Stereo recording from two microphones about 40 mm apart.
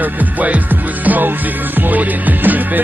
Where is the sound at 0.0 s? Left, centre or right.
Right.